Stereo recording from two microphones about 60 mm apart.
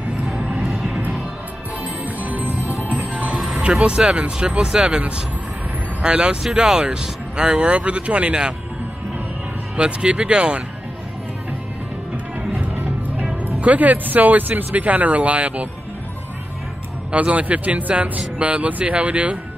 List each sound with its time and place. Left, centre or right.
0.4 s music: right
0.7 s music: centre
2.2 s music: right
3.5 s speech: centre
9.8 s speech: centre
13.6 s speech: right
17.1 s speech: right